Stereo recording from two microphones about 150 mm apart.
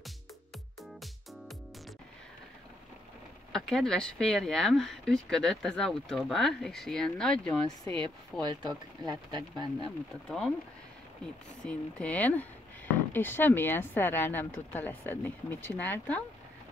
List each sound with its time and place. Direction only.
3.5 s speech: 5° left (ahead or behind)
7.9 s speech: 30° right (ahead or behind)
10.2 s speech: 5° left (ahead or behind)
11.6 s speech: 10° left (ahead or behind)